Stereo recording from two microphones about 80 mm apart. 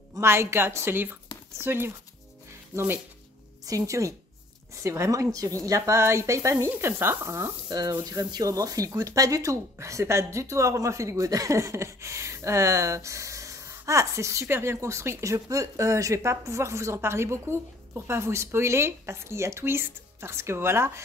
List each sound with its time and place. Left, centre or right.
0.2 s speech: right
3.6 s speech: right
8.0 s speech: right